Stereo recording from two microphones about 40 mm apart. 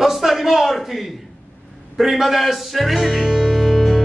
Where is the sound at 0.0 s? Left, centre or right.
Centre.